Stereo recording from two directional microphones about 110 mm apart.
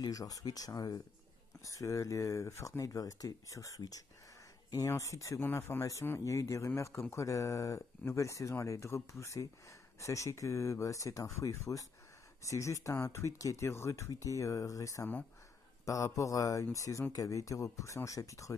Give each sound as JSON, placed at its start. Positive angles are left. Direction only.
{"t": 0.0, "sound": "speech", "side_deg": 35}